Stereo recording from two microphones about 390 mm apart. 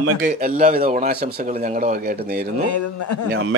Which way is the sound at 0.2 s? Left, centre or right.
Right.